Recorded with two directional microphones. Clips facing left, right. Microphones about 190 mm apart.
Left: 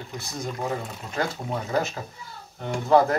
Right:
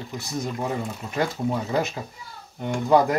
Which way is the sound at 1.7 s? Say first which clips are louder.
Right 1 dB; 15° right (ahead or behind).